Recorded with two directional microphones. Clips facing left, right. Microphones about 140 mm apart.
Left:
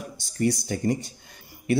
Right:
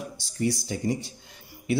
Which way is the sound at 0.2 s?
50° left (ahead or behind).